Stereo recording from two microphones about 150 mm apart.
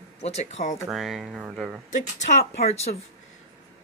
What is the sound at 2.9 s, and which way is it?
Speech, 65° left (ahead or behind).